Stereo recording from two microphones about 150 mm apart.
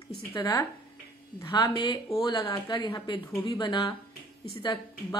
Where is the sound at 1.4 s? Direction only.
30° left (ahead or behind).